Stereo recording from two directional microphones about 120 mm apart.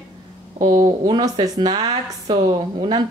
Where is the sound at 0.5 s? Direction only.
90° right.